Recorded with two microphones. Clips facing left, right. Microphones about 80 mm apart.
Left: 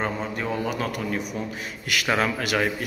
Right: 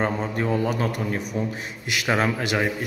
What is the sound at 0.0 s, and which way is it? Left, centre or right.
A man's voice, right.